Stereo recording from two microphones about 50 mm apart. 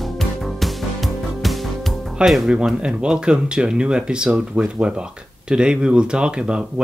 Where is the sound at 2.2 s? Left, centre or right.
Centre.